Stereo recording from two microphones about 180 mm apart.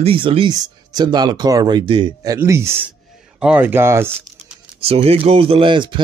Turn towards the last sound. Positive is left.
turn(degrees=-25)  # may be behind; listen again after turning